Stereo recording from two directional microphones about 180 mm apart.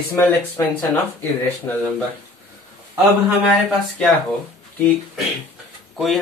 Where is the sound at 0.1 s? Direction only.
15° left (ahead or behind).